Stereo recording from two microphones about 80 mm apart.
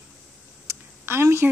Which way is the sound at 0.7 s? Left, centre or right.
Right.